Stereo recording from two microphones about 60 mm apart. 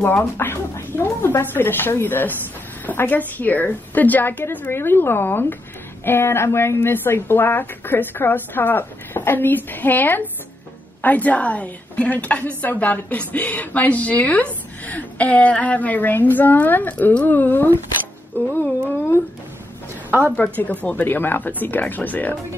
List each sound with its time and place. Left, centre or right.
0.0 s speech: left
0.9 s a woman's voice: left
1.4 s a woman's voice: left
20.1 s a woman's voice: right
20.3 s a woman's voice: left